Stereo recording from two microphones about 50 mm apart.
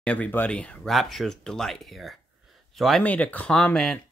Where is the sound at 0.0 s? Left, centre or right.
Left.